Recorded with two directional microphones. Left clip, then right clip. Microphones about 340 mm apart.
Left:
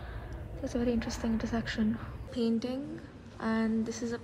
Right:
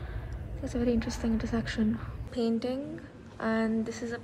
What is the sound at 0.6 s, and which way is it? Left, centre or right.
A woman's voice, centre.